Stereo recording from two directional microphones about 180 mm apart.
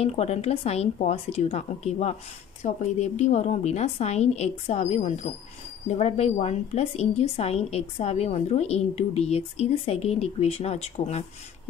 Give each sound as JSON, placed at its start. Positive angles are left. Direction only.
{"t": 0.0, "sound": "a woman's voice", "side_deg": 35}